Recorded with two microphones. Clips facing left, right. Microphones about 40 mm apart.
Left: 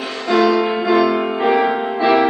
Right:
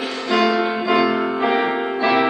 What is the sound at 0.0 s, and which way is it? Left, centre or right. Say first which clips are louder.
Music: left 2 dB; centre.